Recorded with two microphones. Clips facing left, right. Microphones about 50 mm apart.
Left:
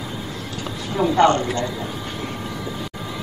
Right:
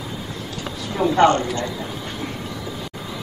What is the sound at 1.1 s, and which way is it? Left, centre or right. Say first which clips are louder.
Speech: right 1 dB; right.